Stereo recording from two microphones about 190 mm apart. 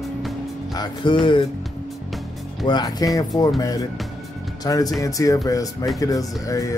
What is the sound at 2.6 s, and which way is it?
Speech, 20° left (ahead or behind).